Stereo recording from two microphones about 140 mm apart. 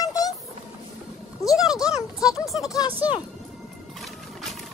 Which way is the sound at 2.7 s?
25° left (ahead or behind).